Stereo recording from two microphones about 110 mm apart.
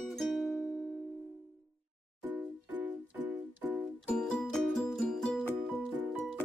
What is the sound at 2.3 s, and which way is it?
Music, 15° right (ahead or behind).